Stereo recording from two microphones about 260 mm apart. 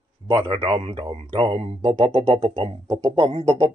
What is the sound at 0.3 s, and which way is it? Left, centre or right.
Speech, centre.